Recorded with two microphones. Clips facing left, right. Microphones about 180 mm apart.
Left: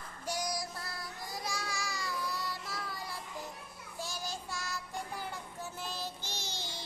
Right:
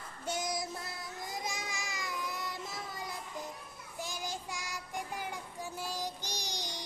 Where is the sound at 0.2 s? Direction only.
25° right (ahead or behind).